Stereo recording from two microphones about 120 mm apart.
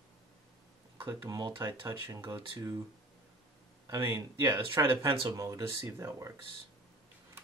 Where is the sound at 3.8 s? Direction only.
25° right (ahead or behind).